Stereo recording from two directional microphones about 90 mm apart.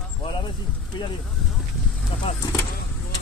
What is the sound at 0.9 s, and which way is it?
Speech, 55° left (ahead or behind).